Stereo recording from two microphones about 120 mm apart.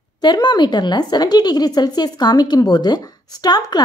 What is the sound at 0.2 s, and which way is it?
A woman's voice, 35° left (ahead or behind).